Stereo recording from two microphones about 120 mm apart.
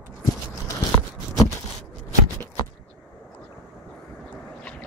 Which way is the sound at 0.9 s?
25° left (ahead or behind).